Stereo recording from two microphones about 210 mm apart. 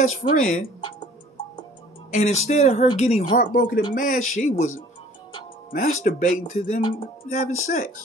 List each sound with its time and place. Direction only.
0.2 s speech: 40° left (ahead or behind)
2.1 s speech: 30° left (ahead or behind)
6.8 s music: 25° left (ahead or behind)
7.2 s speech: 35° left (ahead or behind)